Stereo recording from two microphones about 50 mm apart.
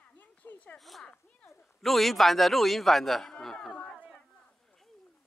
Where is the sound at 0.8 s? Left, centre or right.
Centre.